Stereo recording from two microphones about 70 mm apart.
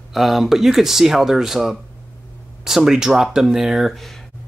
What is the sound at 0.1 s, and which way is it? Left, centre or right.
Speech, centre.